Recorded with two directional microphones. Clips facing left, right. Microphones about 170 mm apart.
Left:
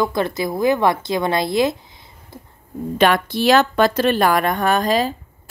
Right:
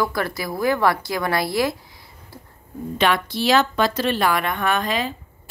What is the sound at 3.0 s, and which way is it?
Speech, 50° left (ahead or behind).